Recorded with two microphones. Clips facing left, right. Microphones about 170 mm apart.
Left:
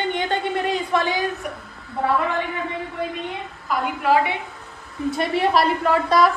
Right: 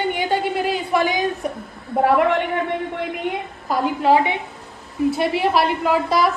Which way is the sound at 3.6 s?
25° right (ahead or behind).